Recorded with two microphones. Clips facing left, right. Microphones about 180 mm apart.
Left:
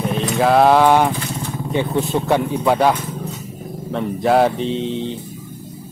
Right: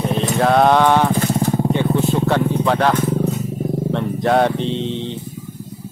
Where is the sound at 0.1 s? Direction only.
Centre (ahead or behind).